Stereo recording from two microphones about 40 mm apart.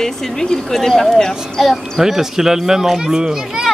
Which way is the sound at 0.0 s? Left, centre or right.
Centre.